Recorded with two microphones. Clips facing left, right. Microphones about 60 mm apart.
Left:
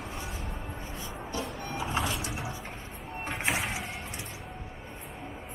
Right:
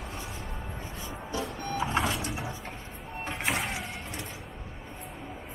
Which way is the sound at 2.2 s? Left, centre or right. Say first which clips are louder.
Right 1 dB; centre.